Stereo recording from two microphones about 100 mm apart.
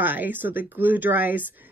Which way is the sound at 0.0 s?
20° right (ahead or behind).